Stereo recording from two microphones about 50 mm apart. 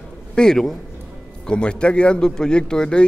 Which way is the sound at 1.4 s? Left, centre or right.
Left.